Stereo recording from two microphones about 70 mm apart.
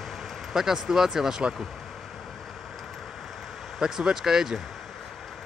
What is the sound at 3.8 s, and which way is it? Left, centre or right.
Speech, centre.